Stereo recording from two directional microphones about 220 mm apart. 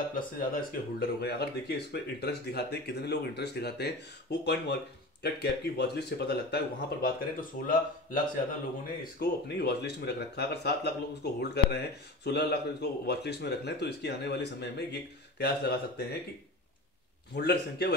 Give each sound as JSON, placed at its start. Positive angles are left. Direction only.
{"t": 0.1, "sound": "speech", "side_deg": 40}
{"t": 9.2, "sound": "speech", "side_deg": 50}
{"t": 17.4, "sound": "speech", "side_deg": 45}